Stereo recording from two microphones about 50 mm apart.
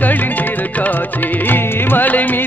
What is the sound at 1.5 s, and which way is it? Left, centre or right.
Music, left.